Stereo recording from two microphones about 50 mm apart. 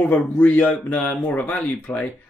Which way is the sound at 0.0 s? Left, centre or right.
Left.